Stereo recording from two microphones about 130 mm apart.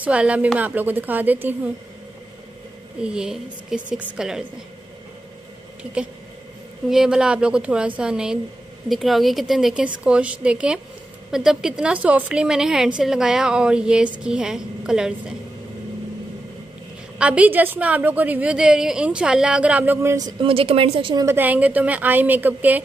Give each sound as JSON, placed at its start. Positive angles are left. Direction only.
{"t": 0.0, "sound": "a woman's voice", "side_deg": -10}
{"t": 3.0, "sound": "a woman's voice", "side_deg": -5}
{"t": 6.9, "sound": "a woman's voice", "side_deg": -5}
{"t": 17.2, "sound": "a woman's voice", "side_deg": -10}
{"t": 20.2, "sound": "speech", "side_deg": -30}
{"t": 20.4, "sound": "a woman's voice", "side_deg": -45}
{"t": 21.3, "sound": "a woman's voice", "side_deg": -15}